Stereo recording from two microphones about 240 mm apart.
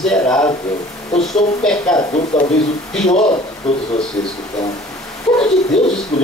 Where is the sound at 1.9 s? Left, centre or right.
Centre.